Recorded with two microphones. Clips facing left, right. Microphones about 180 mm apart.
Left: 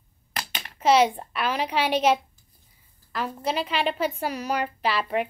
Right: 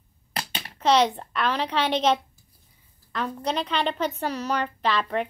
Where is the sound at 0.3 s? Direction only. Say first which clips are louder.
Right 2 dB; 30° right (ahead or behind).